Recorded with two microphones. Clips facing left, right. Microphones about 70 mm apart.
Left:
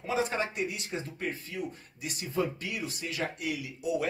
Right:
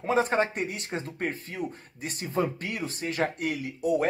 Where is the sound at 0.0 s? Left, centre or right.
Right.